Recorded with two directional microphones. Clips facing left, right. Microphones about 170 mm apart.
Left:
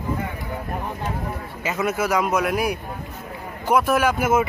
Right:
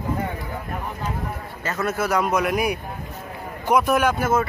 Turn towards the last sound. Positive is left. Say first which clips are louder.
# even
turn(degrees=5)  # may be behind; listen again after turning